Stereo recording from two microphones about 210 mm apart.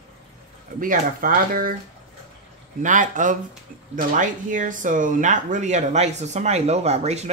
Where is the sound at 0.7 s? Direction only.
40° right (ahead or behind).